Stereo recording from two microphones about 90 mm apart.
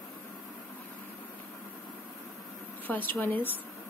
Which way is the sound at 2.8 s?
20° left (ahead or behind).